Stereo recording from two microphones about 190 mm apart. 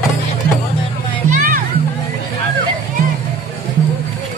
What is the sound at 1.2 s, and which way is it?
Music, 45° right (ahead or behind).